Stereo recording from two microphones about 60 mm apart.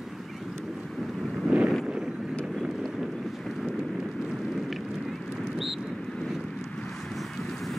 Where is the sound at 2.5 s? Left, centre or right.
Centre.